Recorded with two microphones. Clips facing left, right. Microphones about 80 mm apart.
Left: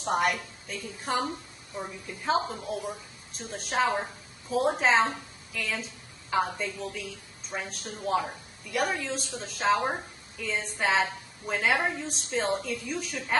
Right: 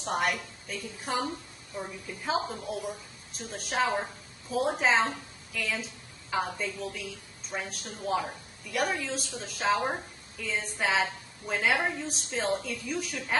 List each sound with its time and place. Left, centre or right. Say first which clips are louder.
0.0 s a woman's voice: left 3 dB; centre